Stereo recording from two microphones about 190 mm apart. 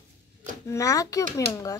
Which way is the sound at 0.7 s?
15° left (ahead or behind).